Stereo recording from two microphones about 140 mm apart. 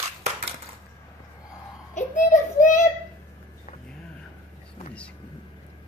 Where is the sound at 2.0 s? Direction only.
65° left (ahead or behind).